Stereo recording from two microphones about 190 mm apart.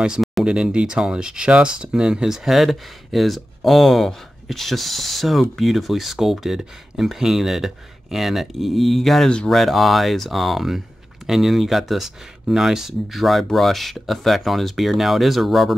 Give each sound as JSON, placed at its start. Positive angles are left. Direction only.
{"t": 0.0, "sound": "speech", "side_deg": 0}